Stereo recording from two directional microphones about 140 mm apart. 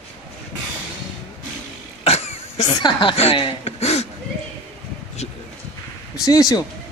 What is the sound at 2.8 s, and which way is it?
A woman's voice, 35° left (ahead or behind).